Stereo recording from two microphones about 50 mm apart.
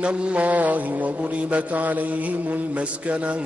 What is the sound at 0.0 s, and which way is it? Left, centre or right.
Mantra, right.